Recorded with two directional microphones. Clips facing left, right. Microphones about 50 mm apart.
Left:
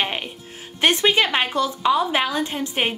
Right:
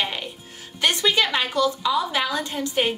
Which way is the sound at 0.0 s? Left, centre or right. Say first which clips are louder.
Left 2 dB; left.